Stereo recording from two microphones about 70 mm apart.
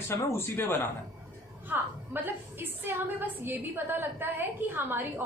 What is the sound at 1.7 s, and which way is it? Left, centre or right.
A woman's voice, right.